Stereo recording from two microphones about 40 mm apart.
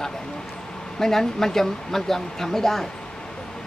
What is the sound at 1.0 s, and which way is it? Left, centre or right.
Speech, centre.